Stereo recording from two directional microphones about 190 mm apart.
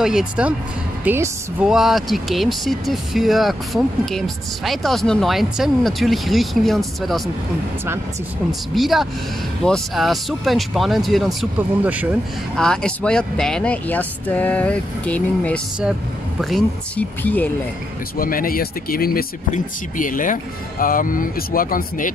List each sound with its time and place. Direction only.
0.0 s speech: 5° right (ahead or behind)
8.7 s speech: centre (ahead or behind)
12.5 s speech: 5° left (ahead or behind)
18.1 s speech: 50° left (ahead or behind)